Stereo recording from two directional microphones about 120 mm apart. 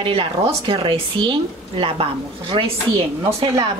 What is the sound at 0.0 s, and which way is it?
Speech, 50° right (ahead or behind).